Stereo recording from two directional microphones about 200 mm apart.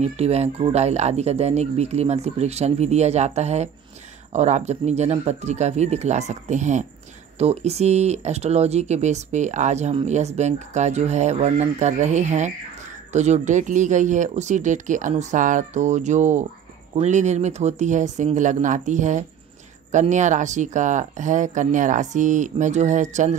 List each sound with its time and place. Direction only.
0.0 s speech: 30° right (ahead or behind)